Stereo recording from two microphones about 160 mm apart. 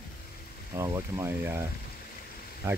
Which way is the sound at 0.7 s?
20° right (ahead or behind).